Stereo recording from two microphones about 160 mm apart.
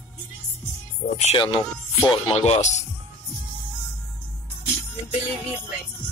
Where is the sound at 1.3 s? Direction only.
30° left (ahead or behind).